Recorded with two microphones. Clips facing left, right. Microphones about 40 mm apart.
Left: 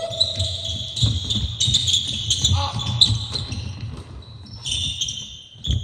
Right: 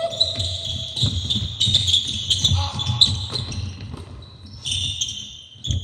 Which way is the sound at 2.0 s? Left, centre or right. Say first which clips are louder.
Even; centre.